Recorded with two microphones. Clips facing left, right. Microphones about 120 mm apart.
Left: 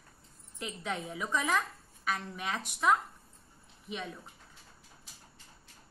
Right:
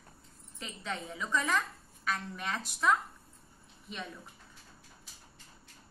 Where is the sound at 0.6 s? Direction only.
10° left (ahead or behind).